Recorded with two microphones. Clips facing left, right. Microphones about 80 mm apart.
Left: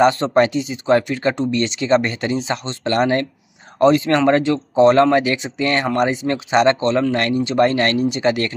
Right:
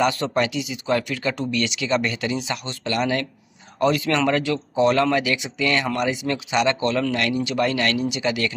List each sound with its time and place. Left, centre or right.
0.0 s speech: left